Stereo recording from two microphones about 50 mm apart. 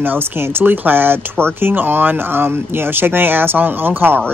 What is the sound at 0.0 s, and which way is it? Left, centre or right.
Speech, right.